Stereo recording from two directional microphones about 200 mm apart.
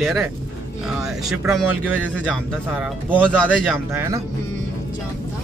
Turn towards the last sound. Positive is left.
turn(degrees=-10)  # may be behind; listen again after turning